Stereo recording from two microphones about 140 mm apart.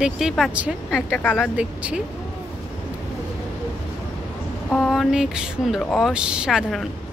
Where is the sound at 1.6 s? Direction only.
10° right (ahead or behind).